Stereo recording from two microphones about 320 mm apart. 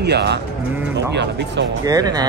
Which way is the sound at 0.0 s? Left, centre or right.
Right.